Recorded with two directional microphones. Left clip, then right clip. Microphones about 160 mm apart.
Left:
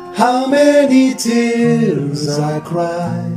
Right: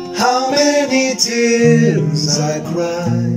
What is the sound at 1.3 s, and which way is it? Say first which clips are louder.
Music: right 2 dB; 30° left (ahead or behind).